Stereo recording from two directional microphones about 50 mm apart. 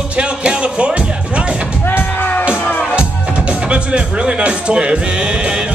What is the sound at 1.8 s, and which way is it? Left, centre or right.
Music, left.